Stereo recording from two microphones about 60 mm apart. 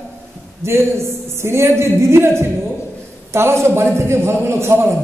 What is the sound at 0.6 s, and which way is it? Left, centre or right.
Speech, right.